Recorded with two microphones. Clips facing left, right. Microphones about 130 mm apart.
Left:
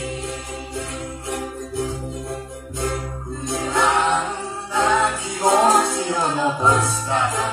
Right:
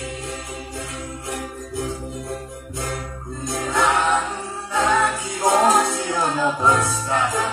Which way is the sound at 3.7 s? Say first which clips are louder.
Even; 25° left (ahead or behind).